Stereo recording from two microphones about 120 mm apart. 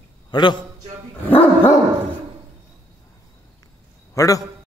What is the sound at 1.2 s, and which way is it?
Dog, 15° left (ahead or behind).